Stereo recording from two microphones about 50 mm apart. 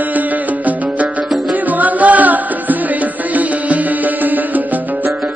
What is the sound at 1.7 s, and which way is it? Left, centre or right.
Music, right.